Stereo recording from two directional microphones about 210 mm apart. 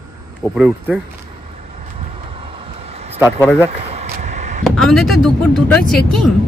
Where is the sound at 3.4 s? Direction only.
10° left (ahead or behind).